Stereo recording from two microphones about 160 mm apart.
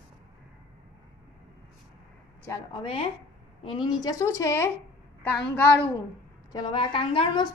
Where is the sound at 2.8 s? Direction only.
35° left (ahead or behind).